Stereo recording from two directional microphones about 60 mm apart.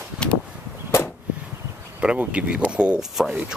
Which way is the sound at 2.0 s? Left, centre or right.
Right.